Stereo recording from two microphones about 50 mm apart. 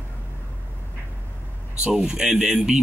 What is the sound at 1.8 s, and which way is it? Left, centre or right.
Speech, centre.